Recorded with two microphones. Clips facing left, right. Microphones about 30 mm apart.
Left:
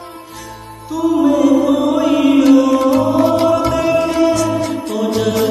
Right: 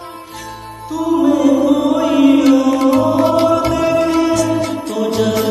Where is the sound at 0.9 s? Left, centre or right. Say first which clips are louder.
Even; centre.